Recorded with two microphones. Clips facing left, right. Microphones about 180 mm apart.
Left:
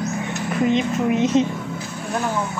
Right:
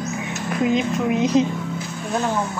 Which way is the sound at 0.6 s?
Centre (ahead or behind).